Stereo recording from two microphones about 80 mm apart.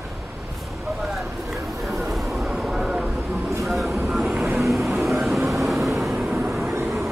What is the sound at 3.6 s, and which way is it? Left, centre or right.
Vehicle, centre.